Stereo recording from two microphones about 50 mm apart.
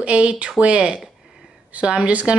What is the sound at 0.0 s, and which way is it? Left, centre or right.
Speech, right.